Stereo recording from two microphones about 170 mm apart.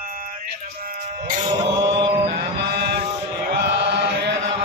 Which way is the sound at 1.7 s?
90° right.